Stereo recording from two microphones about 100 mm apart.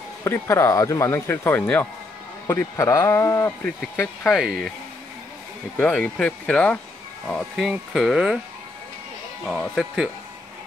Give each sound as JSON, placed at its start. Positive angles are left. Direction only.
{"t": 0.2, "sound": "speech", "side_deg": 25}
{"t": 3.6, "sound": "speech", "side_deg": 15}
{"t": 4.3, "sound": "speech", "side_deg": 0}
{"t": 5.8, "sound": "speech", "side_deg": 15}
{"t": 9.5, "sound": "speech", "side_deg": 0}